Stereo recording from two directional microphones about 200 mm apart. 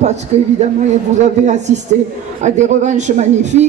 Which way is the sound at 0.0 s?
35° right (ahead or behind).